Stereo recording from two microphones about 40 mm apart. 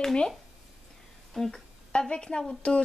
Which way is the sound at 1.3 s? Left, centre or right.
Centre.